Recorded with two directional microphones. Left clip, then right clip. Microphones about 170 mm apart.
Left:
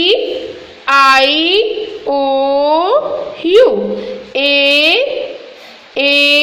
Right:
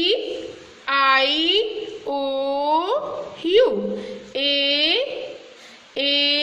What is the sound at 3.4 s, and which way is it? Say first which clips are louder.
Dog: left 8 dB; 15° right (ahead or behind).